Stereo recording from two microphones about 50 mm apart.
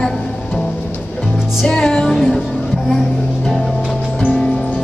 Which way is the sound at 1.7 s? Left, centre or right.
Centre.